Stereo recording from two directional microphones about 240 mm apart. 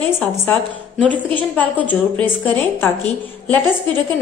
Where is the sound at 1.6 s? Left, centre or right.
Centre.